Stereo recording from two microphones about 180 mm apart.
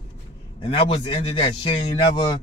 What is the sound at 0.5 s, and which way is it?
A man's voice, 25° left (ahead or behind).